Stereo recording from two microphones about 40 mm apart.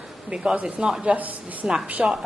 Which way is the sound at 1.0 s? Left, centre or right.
Right.